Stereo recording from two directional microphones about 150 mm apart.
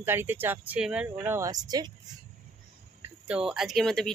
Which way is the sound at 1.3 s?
25° right (ahead or behind).